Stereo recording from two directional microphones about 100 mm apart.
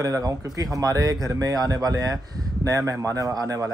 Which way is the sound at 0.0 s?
35° right (ahead or behind).